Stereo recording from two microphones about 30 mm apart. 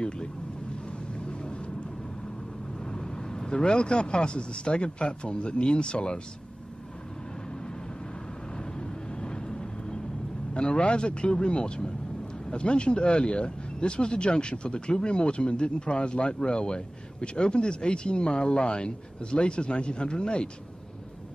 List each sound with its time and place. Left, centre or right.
2.8 s speech: left
8.7 s vehicle: left
10.5 s speech: left